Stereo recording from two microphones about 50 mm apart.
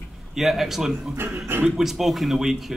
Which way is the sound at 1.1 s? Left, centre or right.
Right.